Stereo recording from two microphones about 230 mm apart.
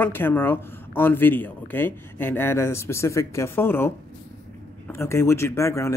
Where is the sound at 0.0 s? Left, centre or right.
Centre.